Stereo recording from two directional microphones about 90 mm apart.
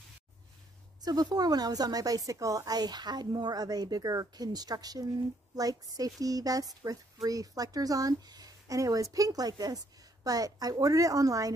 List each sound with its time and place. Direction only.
1.0 s speech: 45° right (ahead or behind)